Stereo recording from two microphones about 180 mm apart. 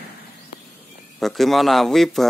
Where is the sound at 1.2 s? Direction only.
Centre (ahead or behind).